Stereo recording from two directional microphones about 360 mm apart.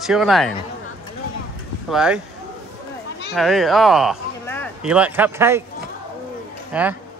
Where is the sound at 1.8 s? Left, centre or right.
Centre.